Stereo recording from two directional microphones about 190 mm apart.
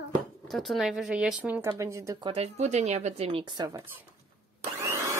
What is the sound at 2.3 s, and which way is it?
Speech, 35° right (ahead or behind).